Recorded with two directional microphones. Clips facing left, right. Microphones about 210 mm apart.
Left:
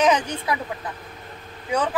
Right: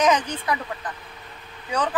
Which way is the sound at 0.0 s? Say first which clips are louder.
Left 1 dB; 10° left (ahead or behind).